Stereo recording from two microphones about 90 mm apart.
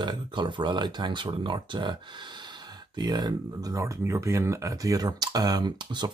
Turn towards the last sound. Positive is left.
turn(degrees=-50)  # may be behind; listen again after turning